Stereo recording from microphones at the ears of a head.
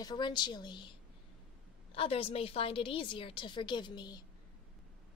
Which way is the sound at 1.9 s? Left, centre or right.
Left.